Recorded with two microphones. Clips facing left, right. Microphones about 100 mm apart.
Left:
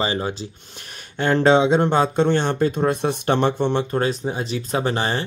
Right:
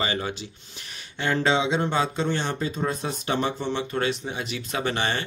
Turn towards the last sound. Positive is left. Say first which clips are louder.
# left 4 dB
turn(degrees=35)  # may be behind; listen again after turning